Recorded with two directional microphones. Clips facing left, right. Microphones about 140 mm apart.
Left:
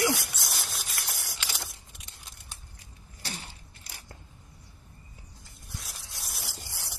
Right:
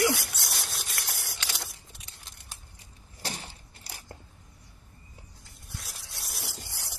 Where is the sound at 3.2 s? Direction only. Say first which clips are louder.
Right 3 dB; 40° right (ahead or behind).